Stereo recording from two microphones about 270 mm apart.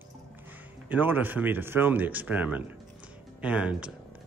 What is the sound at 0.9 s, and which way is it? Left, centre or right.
Speech, centre.